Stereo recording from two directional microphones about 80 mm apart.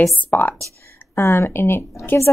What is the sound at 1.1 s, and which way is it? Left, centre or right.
Speech, left.